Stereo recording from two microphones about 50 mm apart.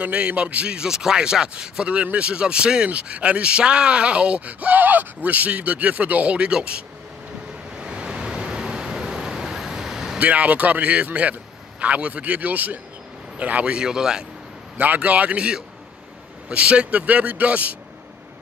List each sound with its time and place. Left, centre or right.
0.0 s speech: right
7.7 s vehicle: centre
10.1 s speech: right
13.7 s a man's voice: centre
14.8 s speech: right